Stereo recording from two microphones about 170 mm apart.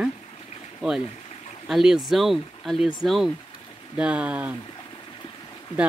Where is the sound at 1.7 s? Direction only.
5° right (ahead or behind).